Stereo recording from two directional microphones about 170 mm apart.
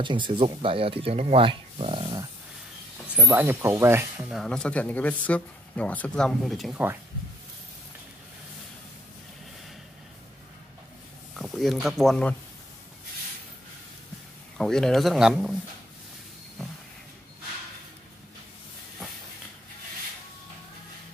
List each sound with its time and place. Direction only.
0.0 s speech: 30° right (ahead or behind)
3.2 s speech: 10° right (ahead or behind)
11.3 s speech: centre (ahead or behind)
14.6 s speech: 5° left (ahead or behind)